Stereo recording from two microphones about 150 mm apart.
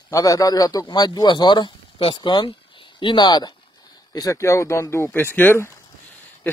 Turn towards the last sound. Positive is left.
turn(degrees=15)  # may be behind; listen again after turning